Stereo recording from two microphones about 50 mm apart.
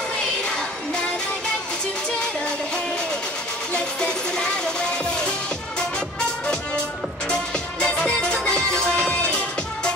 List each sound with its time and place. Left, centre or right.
3.7 s music: centre
7.8 s music: centre